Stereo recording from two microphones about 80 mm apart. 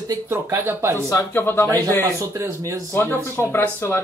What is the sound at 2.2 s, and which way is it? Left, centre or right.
Speech, right.